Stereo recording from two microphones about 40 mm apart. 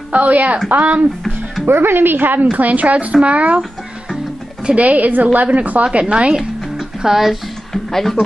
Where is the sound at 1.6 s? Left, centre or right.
Right.